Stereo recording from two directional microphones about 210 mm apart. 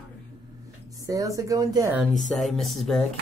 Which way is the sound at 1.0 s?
15° right (ahead or behind).